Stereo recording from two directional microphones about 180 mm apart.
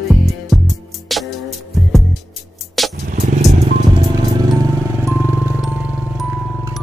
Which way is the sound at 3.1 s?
45° right (ahead or behind).